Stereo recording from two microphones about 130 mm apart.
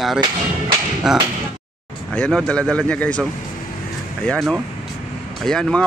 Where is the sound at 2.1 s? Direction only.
5° left (ahead or behind).